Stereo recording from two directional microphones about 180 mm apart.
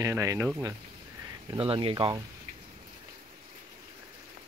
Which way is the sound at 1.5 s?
30° right (ahead or behind).